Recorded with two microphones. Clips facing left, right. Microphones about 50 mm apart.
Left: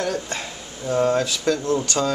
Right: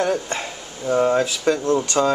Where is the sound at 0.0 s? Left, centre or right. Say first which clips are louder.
Right 4 dB; right.